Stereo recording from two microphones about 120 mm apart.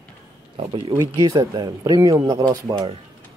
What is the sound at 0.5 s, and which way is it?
Speech, 45° right (ahead or behind).